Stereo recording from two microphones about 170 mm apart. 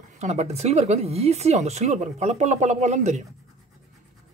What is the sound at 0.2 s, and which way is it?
Speech, 40° right (ahead or behind).